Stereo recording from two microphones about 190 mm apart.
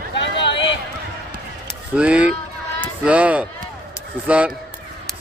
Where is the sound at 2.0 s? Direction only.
5° right (ahead or behind).